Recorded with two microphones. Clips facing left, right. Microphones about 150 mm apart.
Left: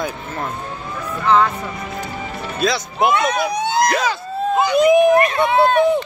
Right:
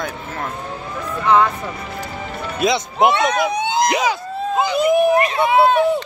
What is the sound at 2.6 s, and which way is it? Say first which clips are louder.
A man's voice: right 2 dB; 20° right (ahead or behind).